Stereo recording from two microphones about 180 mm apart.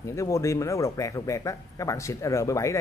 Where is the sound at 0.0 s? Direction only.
15° left (ahead or behind).